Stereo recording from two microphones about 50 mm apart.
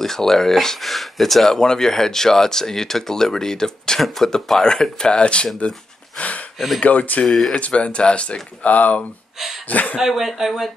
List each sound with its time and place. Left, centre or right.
0.0 s speech: centre
6.1 s a sound: left
6.8 s speech: left
7.2 s speech: centre
7.5 s speech: left
9.9 s speech: centre